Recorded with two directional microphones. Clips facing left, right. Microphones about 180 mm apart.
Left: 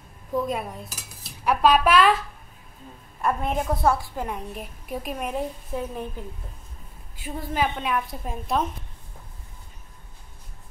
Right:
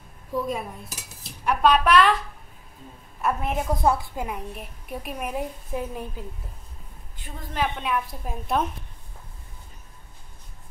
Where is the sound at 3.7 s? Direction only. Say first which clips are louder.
Right 1 dB; 15° right (ahead or behind).